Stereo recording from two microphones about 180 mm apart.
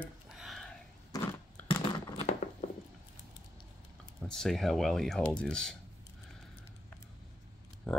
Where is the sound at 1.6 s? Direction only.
30° left (ahead or behind).